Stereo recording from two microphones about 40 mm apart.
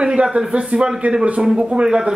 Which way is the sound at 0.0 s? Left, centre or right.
Right.